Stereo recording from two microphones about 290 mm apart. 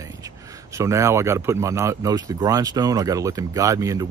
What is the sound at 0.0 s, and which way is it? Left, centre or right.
Speech, centre.